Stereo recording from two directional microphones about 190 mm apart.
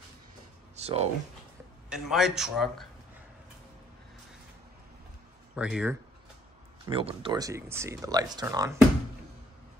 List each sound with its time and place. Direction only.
0.7 s speech: 35° right (ahead or behind)
1.9 s speech: centre (ahead or behind)
5.6 s speech: 5° right (ahead or behind)
6.9 s speech: 30° right (ahead or behind)